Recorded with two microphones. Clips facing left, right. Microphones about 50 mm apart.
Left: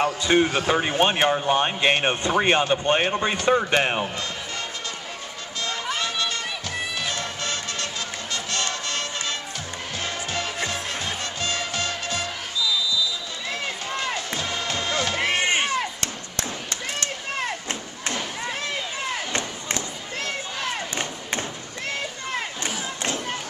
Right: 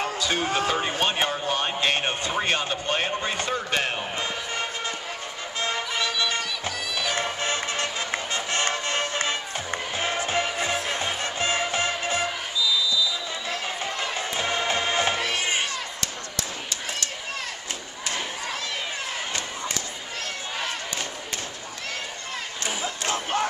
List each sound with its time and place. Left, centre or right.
0.2 s speech: left
0.7 s speech: centre
5.6 s music: right
7.0 s music: right
13.8 s music: right
15.1 s chop: left
22.8 s crowd: right